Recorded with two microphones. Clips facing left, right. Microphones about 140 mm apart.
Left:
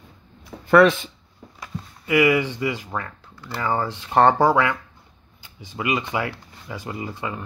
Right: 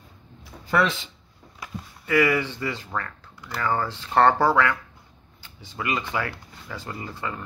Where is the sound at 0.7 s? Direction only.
60° left (ahead or behind).